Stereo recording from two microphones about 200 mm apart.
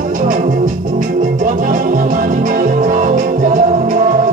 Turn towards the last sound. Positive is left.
turn(degrees=-40)  # may be behind; listen again after turning